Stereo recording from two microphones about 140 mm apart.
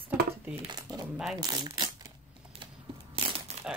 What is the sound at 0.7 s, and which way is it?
Speech, 30° right (ahead or behind).